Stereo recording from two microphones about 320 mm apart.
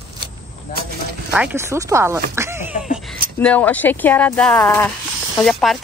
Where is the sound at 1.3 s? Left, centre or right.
Centre.